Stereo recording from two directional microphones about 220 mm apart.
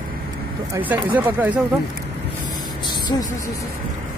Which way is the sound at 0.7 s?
5° right (ahead or behind).